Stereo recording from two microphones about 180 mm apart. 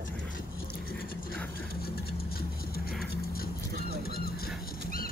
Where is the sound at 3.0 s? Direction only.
60° left (ahead or behind).